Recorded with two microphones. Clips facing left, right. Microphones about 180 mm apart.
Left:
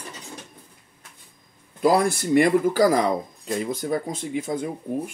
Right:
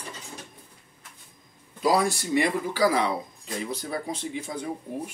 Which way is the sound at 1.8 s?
55° left (ahead or behind).